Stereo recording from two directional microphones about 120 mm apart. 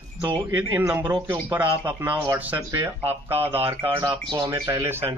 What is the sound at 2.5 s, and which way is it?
Speech, 30° right (ahead or behind).